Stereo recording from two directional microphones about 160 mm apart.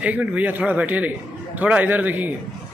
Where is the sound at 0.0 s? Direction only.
10° right (ahead or behind).